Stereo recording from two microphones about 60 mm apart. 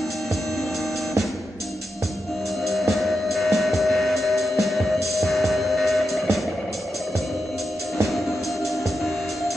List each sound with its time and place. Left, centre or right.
2.6 s music: centre